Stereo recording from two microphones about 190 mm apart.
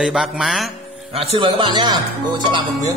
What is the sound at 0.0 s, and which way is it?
Speech, centre (ahead or behind).